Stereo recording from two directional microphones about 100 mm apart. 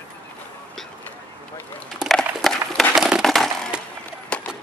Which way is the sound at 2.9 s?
5° right (ahead or behind).